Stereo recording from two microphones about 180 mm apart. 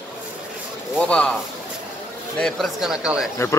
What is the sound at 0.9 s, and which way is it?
Speech, 5° left (ahead or behind).